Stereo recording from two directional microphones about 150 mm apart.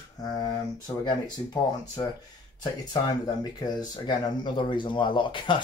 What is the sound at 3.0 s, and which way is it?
Speech, 25° left (ahead or behind).